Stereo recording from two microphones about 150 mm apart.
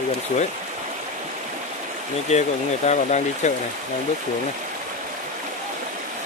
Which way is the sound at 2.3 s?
50° left (ahead or behind).